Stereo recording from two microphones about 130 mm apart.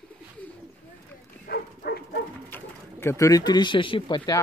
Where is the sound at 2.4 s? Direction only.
15° left (ahead or behind); by 4.4 s 35° left (ahead or behind).